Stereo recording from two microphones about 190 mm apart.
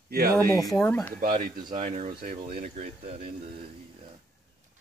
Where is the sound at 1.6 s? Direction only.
25° right (ahead or behind).